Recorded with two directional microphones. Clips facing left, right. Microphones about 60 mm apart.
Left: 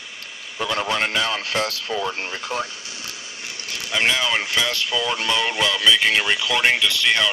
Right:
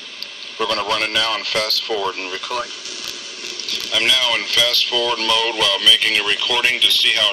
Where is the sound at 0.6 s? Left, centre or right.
Centre.